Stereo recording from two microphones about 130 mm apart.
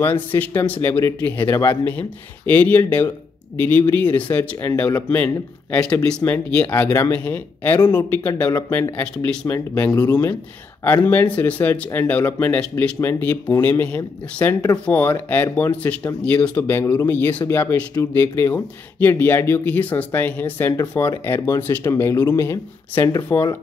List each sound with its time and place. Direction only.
0.0 s speech: 15° left (ahead or behind)
9.9 s speech: 30° left (ahead or behind)
10.8 s speech: 15° left (ahead or behind)